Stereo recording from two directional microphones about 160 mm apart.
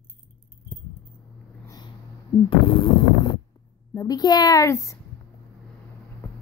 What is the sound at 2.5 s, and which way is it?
A woman's voice, 30° left (ahead or behind).